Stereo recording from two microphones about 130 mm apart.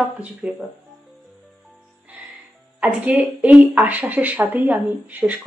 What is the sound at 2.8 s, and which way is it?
Speech, 10° right (ahead or behind).